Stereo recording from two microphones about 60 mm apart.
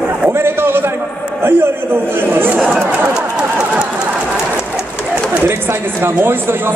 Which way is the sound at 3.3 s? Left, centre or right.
Centre.